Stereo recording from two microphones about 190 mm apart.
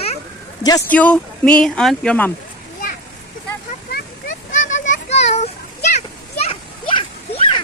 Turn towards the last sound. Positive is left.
turn(degrees=25)  # may be behind; listen again after turning